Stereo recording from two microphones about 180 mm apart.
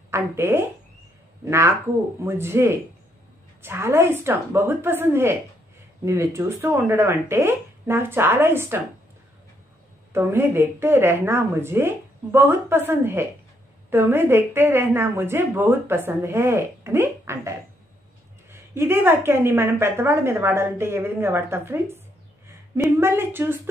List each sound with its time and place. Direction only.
0.1 s a woman's voice: 15° right (ahead or behind)
10.1 s a woman's voice: 15° right (ahead or behind)